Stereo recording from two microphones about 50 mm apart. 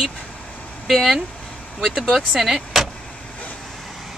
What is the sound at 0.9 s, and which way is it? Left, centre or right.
Speech, centre.